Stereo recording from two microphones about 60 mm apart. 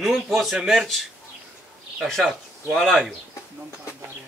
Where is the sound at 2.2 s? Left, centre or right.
Centre.